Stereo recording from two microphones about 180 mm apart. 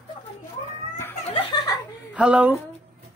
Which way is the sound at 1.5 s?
25° left (ahead or behind).